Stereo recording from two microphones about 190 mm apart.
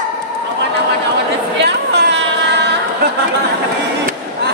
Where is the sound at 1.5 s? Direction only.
65° right (ahead or behind).